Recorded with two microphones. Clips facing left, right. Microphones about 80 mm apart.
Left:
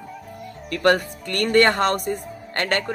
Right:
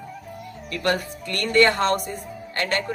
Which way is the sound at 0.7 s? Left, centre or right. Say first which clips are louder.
Left 5 dB; left.